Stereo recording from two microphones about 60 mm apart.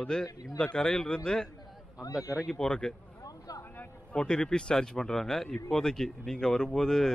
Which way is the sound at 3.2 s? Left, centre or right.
Left.